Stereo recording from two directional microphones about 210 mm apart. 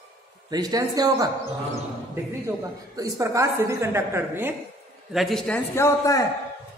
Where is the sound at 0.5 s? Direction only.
20° right (ahead or behind).